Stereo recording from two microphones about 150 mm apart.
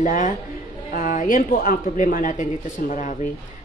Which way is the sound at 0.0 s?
60° left (ahead or behind).